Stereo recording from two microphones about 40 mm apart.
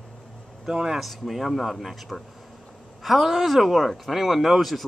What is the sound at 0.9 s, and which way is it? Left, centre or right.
Speech, centre.